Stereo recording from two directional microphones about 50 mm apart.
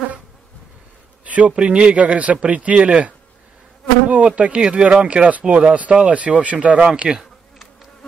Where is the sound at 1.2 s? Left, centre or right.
Right.